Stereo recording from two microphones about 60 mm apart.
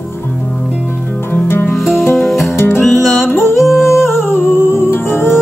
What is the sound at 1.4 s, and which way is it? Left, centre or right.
Music, left.